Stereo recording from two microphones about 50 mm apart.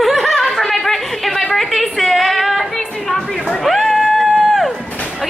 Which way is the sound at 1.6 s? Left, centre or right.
Centre.